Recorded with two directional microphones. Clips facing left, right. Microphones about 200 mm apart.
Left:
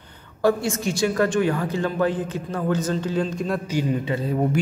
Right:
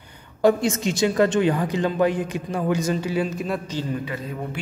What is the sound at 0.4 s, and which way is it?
A woman's voice, 20° right (ahead or behind).